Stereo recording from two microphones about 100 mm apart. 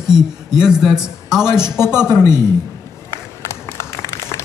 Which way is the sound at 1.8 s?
25° left (ahead or behind).